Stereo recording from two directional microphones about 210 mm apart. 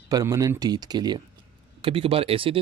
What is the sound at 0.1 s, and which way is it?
Speech, 15° right (ahead or behind).